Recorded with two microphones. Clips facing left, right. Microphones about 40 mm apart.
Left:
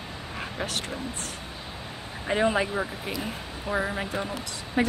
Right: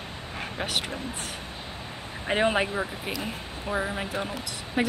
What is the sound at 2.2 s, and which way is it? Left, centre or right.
Speech, right.